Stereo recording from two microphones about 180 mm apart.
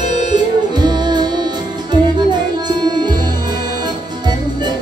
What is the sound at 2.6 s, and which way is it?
Music, 25° right (ahead or behind).